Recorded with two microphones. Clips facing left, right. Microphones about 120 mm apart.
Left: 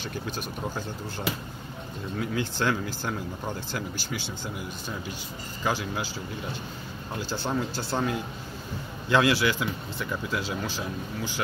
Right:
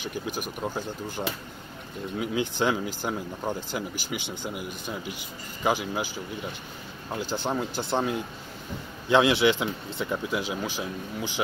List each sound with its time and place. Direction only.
0.0 s speech: 15° right (ahead or behind)
7.2 s speech: 15° right (ahead or behind)
9.1 s speech: 20° right (ahead or behind)